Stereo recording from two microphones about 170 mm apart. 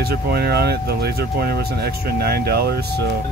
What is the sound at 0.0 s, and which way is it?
Speech, 65° right (ahead or behind).